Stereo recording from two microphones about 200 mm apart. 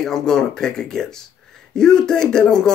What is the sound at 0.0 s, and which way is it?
Speech, centre (ahead or behind).